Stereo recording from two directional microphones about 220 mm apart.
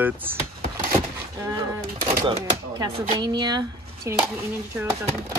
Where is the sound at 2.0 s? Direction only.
25° right (ahead or behind).